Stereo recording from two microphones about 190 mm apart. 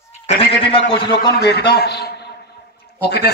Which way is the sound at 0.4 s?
30° left (ahead or behind).